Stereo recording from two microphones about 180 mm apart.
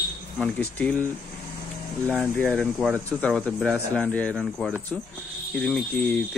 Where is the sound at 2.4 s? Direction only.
5° left (ahead or behind).